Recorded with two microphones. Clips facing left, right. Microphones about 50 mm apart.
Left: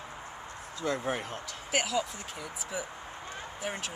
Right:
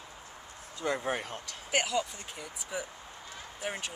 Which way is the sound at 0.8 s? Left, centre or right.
Centre.